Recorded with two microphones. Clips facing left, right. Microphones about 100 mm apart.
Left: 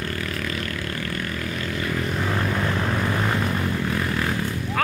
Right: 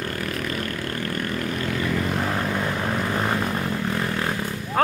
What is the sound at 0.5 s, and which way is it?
Vehicle, 40° right (ahead or behind).